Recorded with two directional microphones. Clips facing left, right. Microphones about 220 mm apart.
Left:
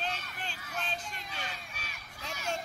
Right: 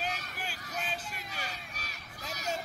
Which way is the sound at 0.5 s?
40° right (ahead or behind).